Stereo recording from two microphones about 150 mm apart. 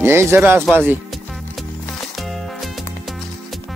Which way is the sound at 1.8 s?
Centre (ahead or behind).